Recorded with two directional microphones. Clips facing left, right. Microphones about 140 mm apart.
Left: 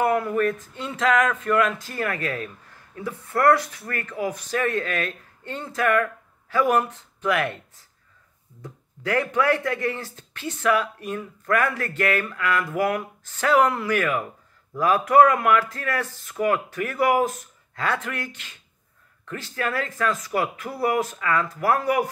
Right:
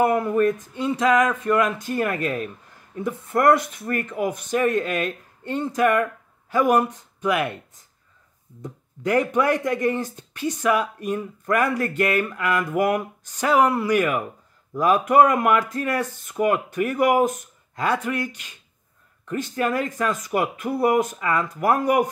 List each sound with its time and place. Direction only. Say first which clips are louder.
0.0 s speech: right 3 dB; 20° right (ahead or behind)